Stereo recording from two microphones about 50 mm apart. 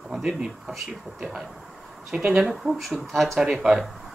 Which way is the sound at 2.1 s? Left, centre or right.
Right.